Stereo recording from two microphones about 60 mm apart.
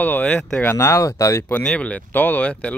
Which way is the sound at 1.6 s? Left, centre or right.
Centre.